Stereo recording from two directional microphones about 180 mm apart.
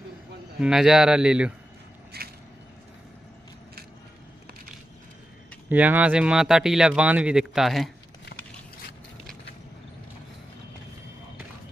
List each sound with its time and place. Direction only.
0.6 s speech: 5° right (ahead or behind)
2.1 s a sound: 60° right (ahead or behind)
5.7 s speech: 10° right (ahead or behind)